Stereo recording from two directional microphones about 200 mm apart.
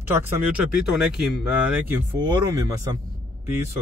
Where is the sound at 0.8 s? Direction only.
Centre (ahead or behind).